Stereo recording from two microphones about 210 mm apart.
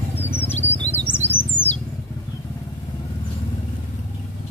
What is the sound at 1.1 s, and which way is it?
Bird, 20° right (ahead or behind).